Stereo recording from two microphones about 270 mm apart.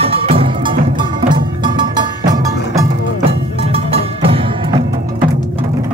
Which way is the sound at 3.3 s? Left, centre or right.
Right.